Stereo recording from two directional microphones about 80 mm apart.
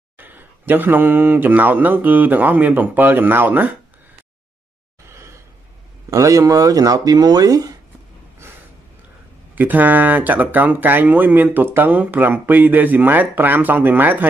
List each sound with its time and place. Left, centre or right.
0.2 s speech: right
5.0 s gasp: right
6.0 s speech: right
8.4 s gasp: right
9.6 s speech: right